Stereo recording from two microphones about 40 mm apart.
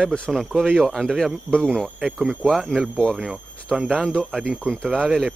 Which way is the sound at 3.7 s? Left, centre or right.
Right.